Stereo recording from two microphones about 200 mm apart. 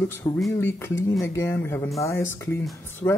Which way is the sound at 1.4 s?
10° left (ahead or behind).